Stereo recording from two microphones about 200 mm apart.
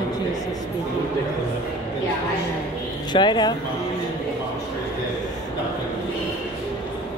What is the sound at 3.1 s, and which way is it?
Speech, 20° left (ahead or behind).